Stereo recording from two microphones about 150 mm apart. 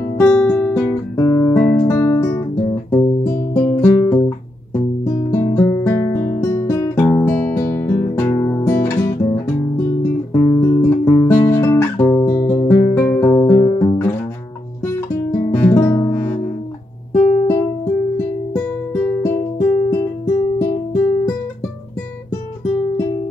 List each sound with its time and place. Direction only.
0.0 s guitar: 10° left (ahead or behind)
4.7 s music: 20° left (ahead or behind)
10.3 s guitar: 15° left (ahead or behind)
14.8 s guitar: 15° left (ahead or behind)
17.1 s music: 15° left (ahead or behind)